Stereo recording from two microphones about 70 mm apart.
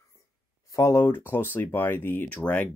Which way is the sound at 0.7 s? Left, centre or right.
Left.